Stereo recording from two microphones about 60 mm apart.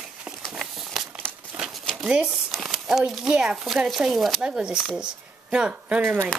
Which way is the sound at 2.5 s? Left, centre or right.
Centre.